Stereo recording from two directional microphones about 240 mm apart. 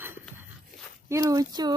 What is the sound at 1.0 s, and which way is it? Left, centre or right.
Speech, centre.